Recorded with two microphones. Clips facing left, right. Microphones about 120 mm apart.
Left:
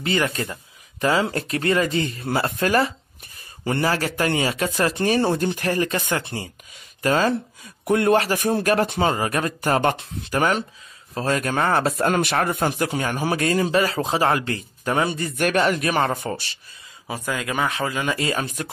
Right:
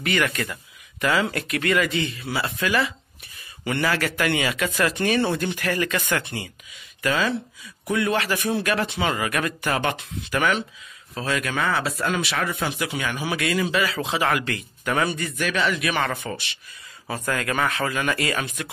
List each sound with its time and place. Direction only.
0.0 s speech: 30° left (ahead or behind); by 9.1 s 45° left (ahead or behind)
9.1 s speech: 30° left (ahead or behind)
15.3 s speech: 50° left (ahead or behind)
17.1 s speech: 15° left (ahead or behind)